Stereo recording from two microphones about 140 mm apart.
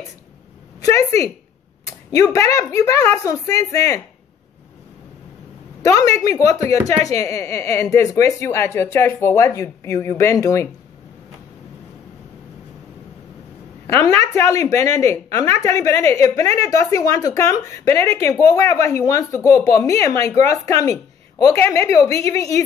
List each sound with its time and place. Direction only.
0.9 s speech: 25° left (ahead or behind)
5.8 s a sound: 25° left (ahead or behind)
6.1 s speech: 25° left (ahead or behind)
13.9 s speech: 20° left (ahead or behind)